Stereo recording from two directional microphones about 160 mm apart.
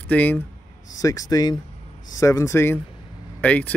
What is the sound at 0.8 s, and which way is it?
Speech, 20° left (ahead or behind).